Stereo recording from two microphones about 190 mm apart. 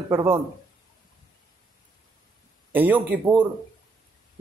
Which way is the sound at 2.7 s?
10° right (ahead or behind).